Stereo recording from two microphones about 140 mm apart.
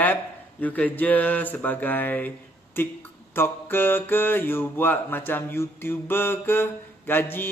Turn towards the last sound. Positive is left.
turn(degrees=15)  # may be behind; listen again after turning